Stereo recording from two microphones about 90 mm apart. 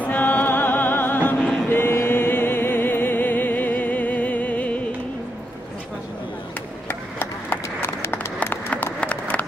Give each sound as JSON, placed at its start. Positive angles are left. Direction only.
{"t": 0.0, "sound": "music", "side_deg": 20}
{"t": 6.9, "sound": "run", "side_deg": 25}